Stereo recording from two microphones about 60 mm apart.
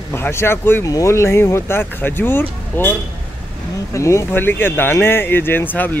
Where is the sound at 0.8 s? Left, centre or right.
Left.